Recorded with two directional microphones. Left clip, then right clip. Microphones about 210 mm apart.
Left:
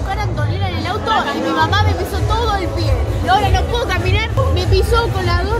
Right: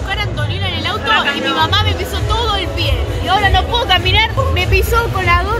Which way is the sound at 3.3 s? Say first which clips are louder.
Right 2 dB; 10° left (ahead or behind).